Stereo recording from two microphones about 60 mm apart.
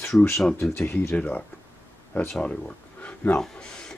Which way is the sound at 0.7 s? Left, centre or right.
Left.